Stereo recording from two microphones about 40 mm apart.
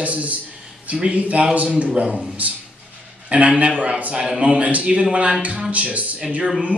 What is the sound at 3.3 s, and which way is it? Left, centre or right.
A man's voice, right.